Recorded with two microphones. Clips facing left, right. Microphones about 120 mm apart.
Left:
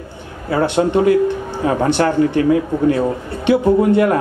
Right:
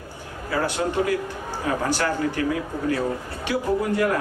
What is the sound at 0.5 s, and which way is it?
A man's voice, 25° left (ahead or behind).